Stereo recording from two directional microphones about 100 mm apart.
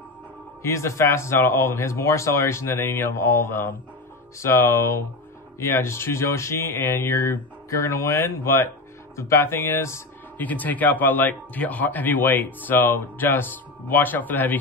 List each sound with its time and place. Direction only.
0.6 s speech: 30° left (ahead or behind)
10.4 s speech: 15° left (ahead or behind)